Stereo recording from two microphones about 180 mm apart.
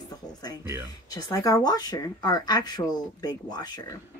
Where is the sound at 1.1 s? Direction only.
20° left (ahead or behind).